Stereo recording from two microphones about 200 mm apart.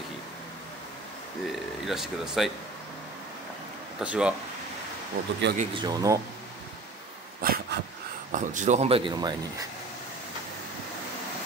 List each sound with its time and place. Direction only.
1.5 s speech: centre (ahead or behind)
4.0 s speech: 5° right (ahead or behind)
5.5 s speech: 60° right (ahead or behind)
5.8 s speech: 20° right (ahead or behind)
7.4 s a sound: 50° right (ahead or behind)
8.3 s speech: 40° right (ahead or behind); by 9.7 s 25° right (ahead or behind)